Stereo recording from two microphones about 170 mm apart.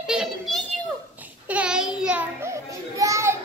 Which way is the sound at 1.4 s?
5° right (ahead or behind).